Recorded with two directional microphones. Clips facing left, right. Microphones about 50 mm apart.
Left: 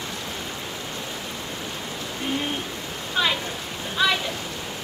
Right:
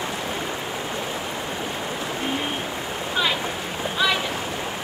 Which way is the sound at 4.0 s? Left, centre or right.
Centre.